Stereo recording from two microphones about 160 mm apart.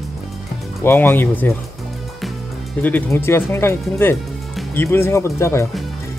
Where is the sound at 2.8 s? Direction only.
10° left (ahead or behind).